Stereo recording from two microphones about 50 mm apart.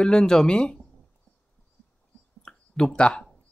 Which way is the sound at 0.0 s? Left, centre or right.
Centre.